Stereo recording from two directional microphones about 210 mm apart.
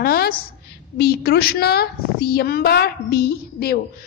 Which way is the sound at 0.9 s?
50° left (ahead or behind).